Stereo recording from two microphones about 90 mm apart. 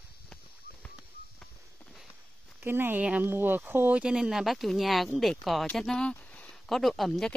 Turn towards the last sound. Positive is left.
turn(degrees=0)  # may be behind; listen again after turning